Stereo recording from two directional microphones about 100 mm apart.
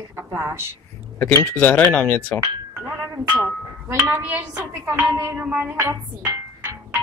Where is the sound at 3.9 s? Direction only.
15° right (ahead or behind).